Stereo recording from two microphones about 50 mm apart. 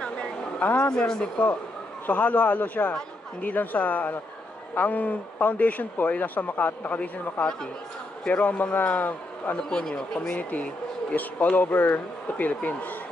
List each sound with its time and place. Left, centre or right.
0.7 s speech: left
2.0 s speech: left
7.0 s speech: left
9.6 s a man's voice: centre
10.3 s speech: left